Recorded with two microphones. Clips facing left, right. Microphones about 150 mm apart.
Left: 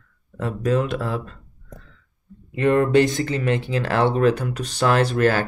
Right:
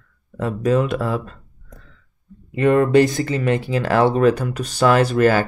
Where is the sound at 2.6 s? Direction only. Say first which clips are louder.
Right 3 dB; 50° right (ahead or behind).